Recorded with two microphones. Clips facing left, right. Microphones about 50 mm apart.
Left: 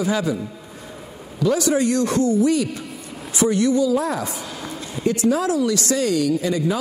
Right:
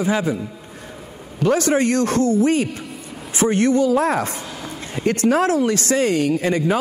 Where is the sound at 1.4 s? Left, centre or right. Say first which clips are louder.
Right 2 dB; right.